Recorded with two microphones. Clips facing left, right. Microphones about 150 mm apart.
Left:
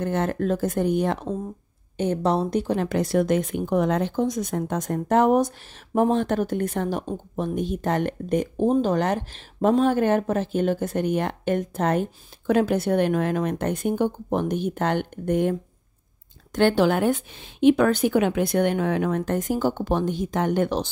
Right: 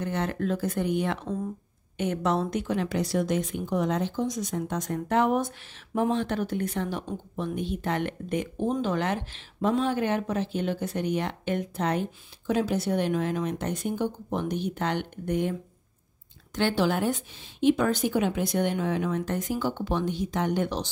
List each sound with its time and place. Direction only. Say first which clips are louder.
0.0 s speech: left 5 dB; 50° left (ahead or behind)
16.5 s speech: left 6 dB; 55° left (ahead or behind)